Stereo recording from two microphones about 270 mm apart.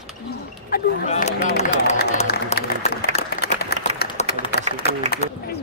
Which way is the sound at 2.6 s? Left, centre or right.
Left.